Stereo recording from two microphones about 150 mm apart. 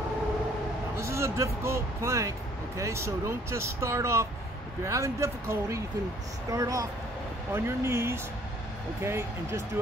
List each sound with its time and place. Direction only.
0.9 s speech: 20° right (ahead or behind)